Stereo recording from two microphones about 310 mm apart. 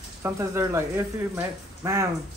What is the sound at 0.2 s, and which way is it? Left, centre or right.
A man's voice, centre.